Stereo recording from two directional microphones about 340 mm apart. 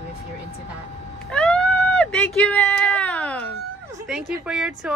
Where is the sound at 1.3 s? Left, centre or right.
Centre.